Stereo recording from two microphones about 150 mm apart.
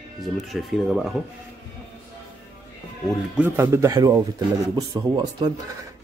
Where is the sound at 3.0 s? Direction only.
10° right (ahead or behind).